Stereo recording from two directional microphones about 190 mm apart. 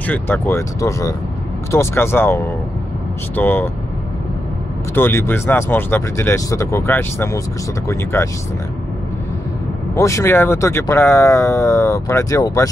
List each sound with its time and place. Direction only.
0.0 s speech: 10° left (ahead or behind)
4.9 s speech: 10° left (ahead or behind)
9.9 s speech: 15° left (ahead or behind)